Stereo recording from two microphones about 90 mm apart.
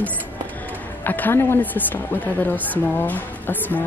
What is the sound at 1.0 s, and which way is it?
Speech, 20° left (ahead or behind).